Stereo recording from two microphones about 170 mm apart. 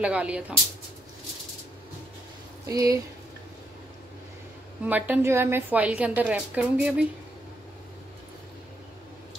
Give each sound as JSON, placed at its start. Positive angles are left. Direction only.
{"t": 0.0, "sound": "a woman's voice", "side_deg": -5}
{"t": 2.7, "sound": "speech", "side_deg": -20}
{"t": 4.8, "sound": "a woman's voice", "side_deg": -10}